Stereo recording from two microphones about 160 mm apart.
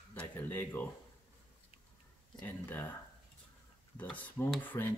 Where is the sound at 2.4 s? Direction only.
15° left (ahead or behind).